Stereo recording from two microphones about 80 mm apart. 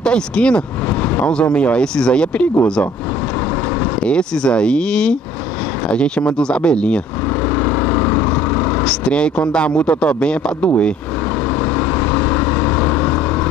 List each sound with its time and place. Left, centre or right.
0.0 s speech: centre
4.0 s speech: centre
7.9 s vehicle: left
8.8 s speech: centre